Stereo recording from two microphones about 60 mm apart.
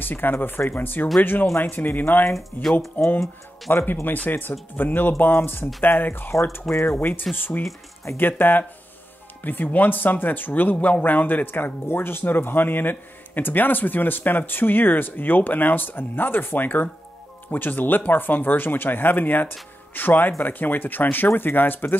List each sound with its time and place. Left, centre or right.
0.0 s speech: left
6.7 s speech: left
7.0 s speech: left